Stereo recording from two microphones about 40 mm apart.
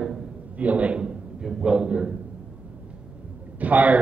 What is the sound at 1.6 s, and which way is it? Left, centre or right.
Speech, right.